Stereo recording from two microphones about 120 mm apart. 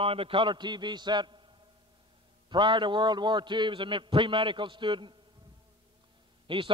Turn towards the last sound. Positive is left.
turn(degrees=-45)  # may be behind; listen again after turning